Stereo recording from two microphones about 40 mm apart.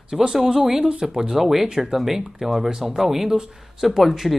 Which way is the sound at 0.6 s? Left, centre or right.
Right.